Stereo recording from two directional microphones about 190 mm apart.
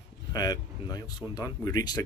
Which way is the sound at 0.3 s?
20° left (ahead or behind).